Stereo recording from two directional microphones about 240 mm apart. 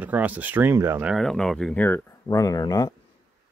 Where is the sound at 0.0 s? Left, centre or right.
Centre.